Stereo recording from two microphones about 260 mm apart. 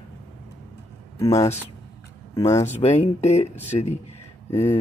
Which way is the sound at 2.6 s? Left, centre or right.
Left.